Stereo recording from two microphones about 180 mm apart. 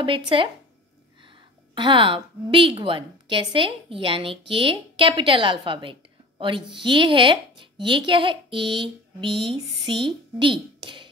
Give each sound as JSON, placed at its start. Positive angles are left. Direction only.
{"t": 0.0, "sound": "a woman's voice", "side_deg": -30}
{"t": 1.8, "sound": "a woman's voice", "side_deg": -30}